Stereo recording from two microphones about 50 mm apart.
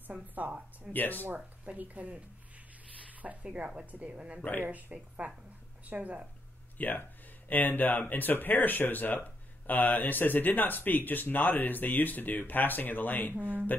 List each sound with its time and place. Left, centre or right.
0.0 s a woman's voice: right
0.9 s speech: left
1.8 s a woman's voice: right
6.8 s speech: left